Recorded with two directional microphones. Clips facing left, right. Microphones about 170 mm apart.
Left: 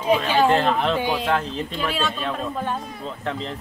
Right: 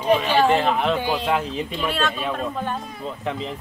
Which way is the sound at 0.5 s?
5° right (ahead or behind).